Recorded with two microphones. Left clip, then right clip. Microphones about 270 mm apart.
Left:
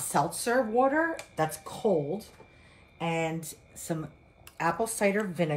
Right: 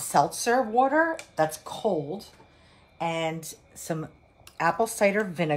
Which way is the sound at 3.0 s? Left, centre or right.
Centre.